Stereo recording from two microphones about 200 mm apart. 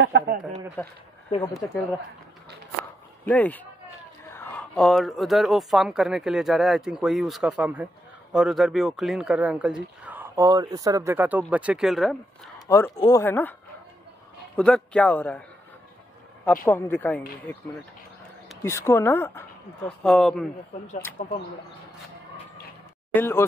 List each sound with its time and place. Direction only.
0.0 s a sound: 60° right (ahead or behind)
0.8 s speech: 10° left (ahead or behind)
3.3 s speech: 10° left (ahead or behind)
12.5 s speech: 15° left (ahead or behind)
14.6 s speech: 5° left (ahead or behind)
16.6 s speech: 10° left (ahead or behind)
18.6 s speech: 15° left (ahead or behind)
21.2 s speech: 40° left (ahead or behind)
23.1 s speech: 10° left (ahead or behind)